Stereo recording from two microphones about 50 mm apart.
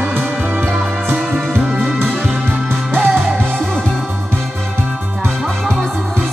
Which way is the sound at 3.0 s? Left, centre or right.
Right.